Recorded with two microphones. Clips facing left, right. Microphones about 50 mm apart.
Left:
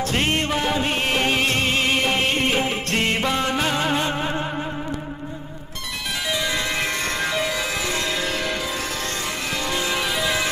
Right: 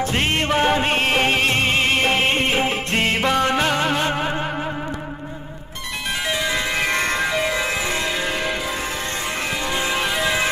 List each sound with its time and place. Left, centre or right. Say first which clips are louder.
0.0 s music: right 1 dB; right
3.3 s music: right 3 dB; right; by 4.5 s centre
6.2 s music: right 1 dB; centre
6.9 s music: right 4 dB; right
7.2 s change ringing: right 3 dB; centre
9.8 s music: right 2 dB; right